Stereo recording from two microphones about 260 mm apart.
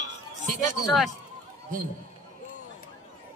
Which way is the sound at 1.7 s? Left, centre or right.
Right.